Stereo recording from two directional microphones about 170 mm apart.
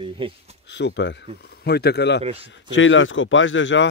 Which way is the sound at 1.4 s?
70° left (ahead or behind).